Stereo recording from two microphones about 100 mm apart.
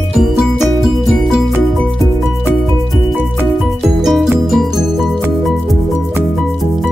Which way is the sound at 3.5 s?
5° right (ahead or behind).